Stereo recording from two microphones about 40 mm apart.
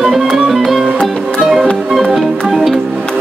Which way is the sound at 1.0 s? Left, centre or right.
Centre.